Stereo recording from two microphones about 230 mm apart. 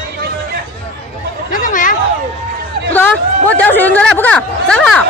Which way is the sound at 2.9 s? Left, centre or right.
Centre.